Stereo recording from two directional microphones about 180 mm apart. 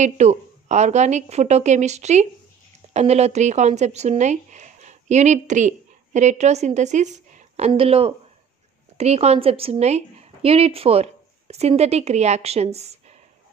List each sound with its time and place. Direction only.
0.0 s a woman's voice: 40° right (ahead or behind)